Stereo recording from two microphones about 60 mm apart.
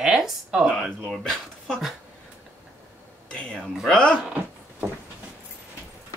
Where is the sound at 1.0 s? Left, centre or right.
Centre.